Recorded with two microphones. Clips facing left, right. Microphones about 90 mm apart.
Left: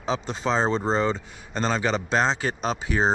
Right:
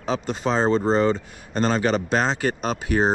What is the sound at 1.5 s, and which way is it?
Speech, 50° right (ahead or behind).